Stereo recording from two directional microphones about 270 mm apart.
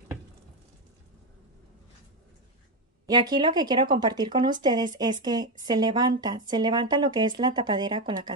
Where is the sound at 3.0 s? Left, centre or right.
Centre.